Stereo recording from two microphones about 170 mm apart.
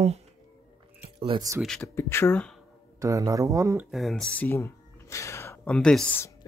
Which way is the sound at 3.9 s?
Centre (ahead or behind).